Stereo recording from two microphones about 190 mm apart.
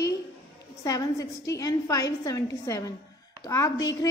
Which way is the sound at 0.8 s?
15° left (ahead or behind).